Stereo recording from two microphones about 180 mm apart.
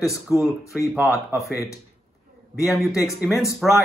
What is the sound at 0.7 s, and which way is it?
Speech, centre (ahead or behind).